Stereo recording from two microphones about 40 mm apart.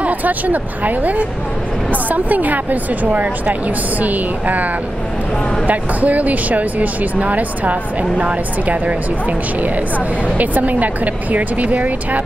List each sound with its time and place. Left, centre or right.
0.0 s speech: right
5.7 s speech: right